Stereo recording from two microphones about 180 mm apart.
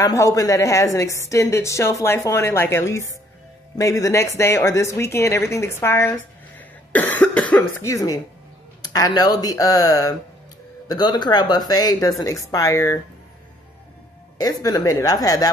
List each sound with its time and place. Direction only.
0.0 s a woman's voice: 15° left (ahead or behind)
14.4 s speech: 20° left (ahead or behind)